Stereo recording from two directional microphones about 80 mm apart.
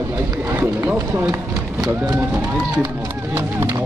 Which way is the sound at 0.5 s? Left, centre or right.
Right.